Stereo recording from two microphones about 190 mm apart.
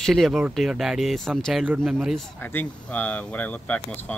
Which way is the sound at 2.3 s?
10° left (ahead or behind).